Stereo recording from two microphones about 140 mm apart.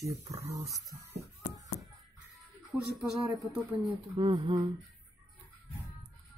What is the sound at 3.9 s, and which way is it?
Speech, 35° right (ahead or behind).